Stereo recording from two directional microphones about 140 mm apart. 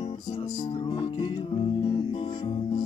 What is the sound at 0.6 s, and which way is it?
Music, 35° left (ahead or behind).